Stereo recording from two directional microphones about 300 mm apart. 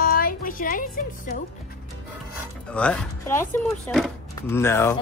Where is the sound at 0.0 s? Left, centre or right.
Left.